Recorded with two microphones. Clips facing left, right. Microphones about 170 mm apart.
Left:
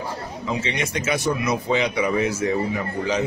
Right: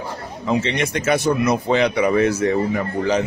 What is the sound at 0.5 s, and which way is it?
Speech, 60° right (ahead or behind).